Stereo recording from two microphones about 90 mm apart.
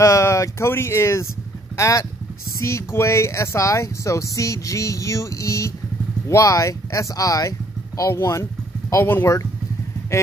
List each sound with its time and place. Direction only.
0.0 s speech: 35° left (ahead or behind)